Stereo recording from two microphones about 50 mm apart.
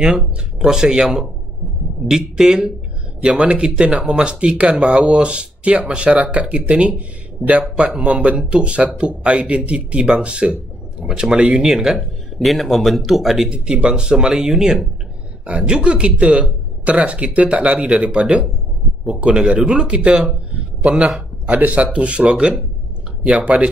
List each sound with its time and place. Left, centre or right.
0.0 s speech: centre
3.2 s speech: right
12.4 s a man's voice: centre
13.5 s speech: right
20.5 s a sound: right
21.5 s speech: right